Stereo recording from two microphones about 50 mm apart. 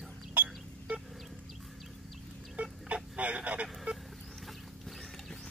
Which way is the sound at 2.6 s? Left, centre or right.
Right.